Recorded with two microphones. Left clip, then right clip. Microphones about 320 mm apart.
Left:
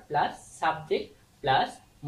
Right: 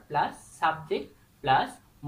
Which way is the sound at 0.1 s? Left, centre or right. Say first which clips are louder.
Left 1 dB; centre.